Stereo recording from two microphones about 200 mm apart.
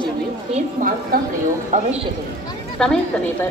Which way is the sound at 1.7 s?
35° right (ahead or behind).